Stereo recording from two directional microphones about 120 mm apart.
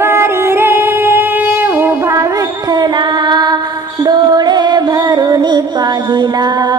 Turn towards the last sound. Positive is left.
turn(degrees=-40)  # may be behind; listen again after turning